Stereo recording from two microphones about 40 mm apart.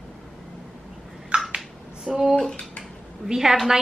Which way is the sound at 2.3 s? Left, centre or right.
Centre.